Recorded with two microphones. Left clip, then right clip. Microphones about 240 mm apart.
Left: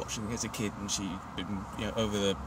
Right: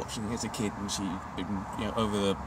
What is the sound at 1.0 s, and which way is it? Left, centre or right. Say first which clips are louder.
Speech: right 3 dB; centre.